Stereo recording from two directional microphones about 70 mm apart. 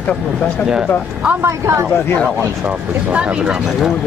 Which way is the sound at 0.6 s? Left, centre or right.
Centre.